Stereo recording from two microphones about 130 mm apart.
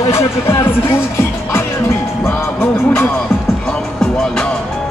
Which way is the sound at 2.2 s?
15° left (ahead or behind).